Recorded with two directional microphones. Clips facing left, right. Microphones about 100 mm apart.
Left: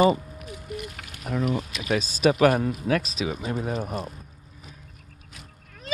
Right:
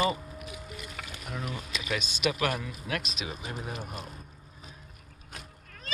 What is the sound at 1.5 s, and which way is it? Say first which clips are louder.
Speech: left 8 dB; 35° left (ahead or behind).